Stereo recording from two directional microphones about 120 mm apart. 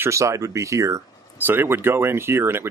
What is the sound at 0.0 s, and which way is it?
Speech, 25° right (ahead or behind).